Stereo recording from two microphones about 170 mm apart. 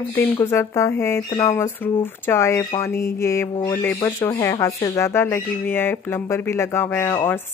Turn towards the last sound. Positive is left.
turn(degrees=15)  # may be behind; listen again after turning